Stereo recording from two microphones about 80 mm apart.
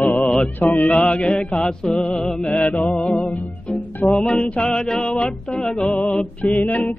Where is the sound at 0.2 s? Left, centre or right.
Centre.